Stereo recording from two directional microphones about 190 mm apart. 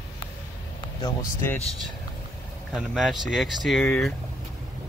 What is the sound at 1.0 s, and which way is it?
Speech, 15° left (ahead or behind).